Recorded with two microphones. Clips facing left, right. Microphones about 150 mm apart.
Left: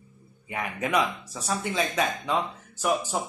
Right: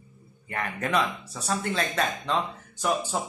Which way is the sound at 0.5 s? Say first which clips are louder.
Even; 10° left (ahead or behind).